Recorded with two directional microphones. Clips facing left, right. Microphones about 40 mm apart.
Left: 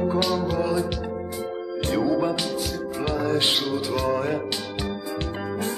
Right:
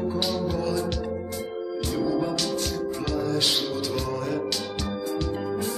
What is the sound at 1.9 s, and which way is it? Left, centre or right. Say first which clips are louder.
Music: left 4 dB; left.